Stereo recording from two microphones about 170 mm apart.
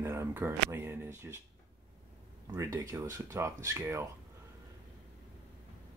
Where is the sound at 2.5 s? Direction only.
20° right (ahead or behind).